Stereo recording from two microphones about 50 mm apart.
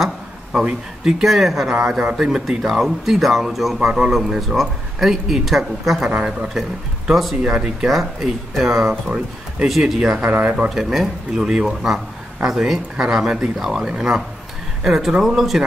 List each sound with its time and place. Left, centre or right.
0.0 s a sound: centre
1.2 s speech: centre
7.1 s speech: centre
7.4 s speech: centre
7.9 s speech: centre
9.9 s speech: centre
10.2 s speech: right
10.7 s speech: centre